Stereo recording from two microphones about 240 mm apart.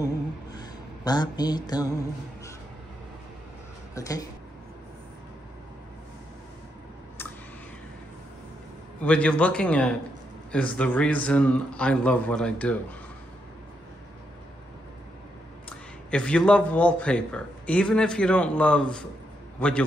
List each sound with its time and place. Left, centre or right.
0.6 s mantra: centre
3.9 s speech: centre
9.0 s a man's voice: centre
16.1 s a man's voice: centre